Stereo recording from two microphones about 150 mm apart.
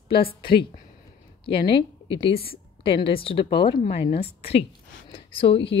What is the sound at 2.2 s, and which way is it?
A woman's voice, 40° left (ahead or behind).